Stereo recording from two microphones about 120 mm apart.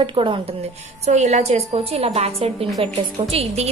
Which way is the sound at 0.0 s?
45° right (ahead or behind).